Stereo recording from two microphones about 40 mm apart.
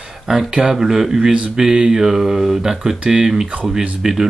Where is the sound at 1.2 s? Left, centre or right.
Right.